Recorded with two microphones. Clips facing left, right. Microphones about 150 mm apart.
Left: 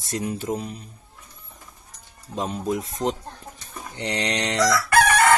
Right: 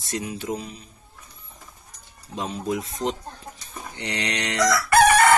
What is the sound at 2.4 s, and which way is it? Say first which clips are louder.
Speech: left 1 dB; 40° left (ahead or behind).